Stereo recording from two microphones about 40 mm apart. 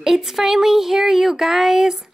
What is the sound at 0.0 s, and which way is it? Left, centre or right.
A woman's voice, centre.